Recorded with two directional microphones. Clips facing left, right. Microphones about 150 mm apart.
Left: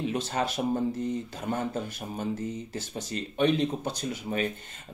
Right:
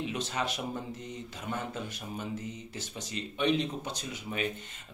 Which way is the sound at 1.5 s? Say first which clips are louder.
Left 6 dB; 45° left (ahead or behind).